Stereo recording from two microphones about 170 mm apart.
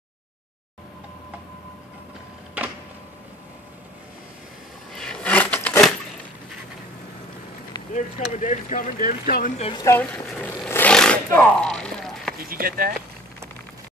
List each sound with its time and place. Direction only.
4.9 s a sound: 5° left (ahead or behind)
7.9 s speech: 45° left (ahead or behind)
9.6 s a woman's voice: 30° left (ahead or behind)
9.8 s speech: 10° left (ahead or behind)
12.4 s speech: 60° right (ahead or behind)